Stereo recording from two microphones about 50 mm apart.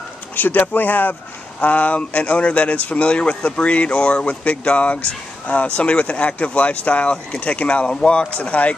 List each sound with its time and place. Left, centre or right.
0.4 s speech: left